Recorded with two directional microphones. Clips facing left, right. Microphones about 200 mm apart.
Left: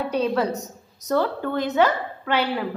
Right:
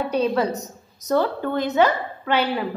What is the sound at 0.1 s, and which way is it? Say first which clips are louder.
A woman's voice: right 1 dB; 15° right (ahead or behind).